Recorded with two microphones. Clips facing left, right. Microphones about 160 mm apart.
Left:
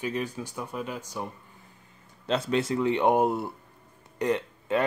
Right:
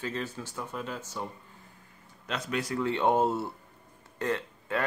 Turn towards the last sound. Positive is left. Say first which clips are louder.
# left 5 dB
turn(degrees=20)  # may be behind; listen again after turning